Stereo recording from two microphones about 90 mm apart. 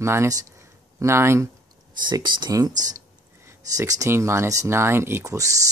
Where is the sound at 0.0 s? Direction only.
30° right (ahead or behind).